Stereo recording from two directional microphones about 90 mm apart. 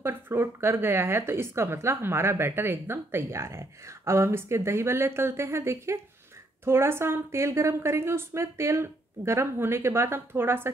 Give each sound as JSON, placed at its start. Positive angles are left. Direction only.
{"t": 0.0, "sound": "a woman's voice", "side_deg": -25}